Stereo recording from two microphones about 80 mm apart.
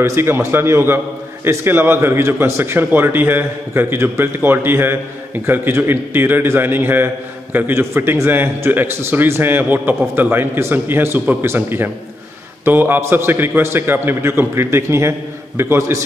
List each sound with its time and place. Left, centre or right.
0.0 s a man's voice: right